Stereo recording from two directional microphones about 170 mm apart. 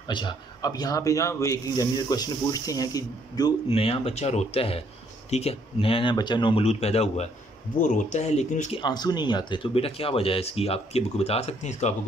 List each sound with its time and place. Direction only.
0.1 s speech: 25° left (ahead or behind)
3.6 s speech: 35° left (ahead or behind)
8.8 s speech: 25° left (ahead or behind); by 11.9 s 40° left (ahead or behind)